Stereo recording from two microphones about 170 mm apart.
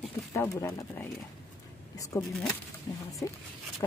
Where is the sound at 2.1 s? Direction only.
15° left (ahead or behind).